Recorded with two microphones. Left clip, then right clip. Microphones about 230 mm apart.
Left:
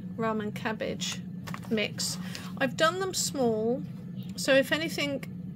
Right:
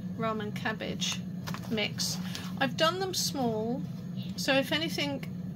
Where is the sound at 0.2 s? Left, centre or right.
Left.